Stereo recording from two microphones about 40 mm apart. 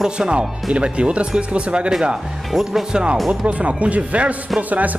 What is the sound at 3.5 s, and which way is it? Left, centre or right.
Speech, right.